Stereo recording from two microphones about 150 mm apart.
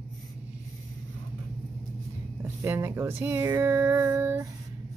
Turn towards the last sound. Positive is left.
turn(degrees=-15)  # may be behind; listen again after turning